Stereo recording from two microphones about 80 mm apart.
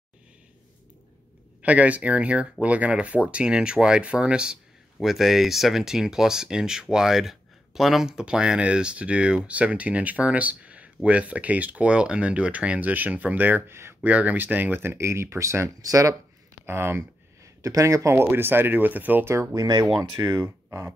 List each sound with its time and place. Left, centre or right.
1.6 s speech: centre
14.0 s speech: centre; by 16.2 s right
16.6 s speech: right
19.5 s speech: right
20.4 s speech: right